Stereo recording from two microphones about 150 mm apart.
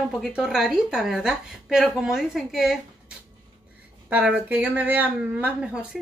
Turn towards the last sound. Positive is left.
turn(degrees=-10)  # may be behind; listen again after turning